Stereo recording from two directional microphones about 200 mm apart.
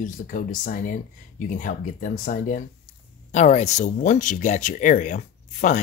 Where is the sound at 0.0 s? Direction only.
40° left (ahead or behind).